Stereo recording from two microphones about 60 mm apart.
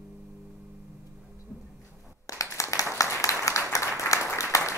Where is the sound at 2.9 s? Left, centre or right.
Left.